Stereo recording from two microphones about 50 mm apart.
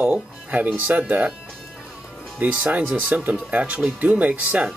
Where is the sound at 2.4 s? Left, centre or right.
Right.